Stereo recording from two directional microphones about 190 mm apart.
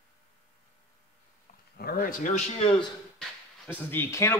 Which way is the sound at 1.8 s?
50° left (ahead or behind).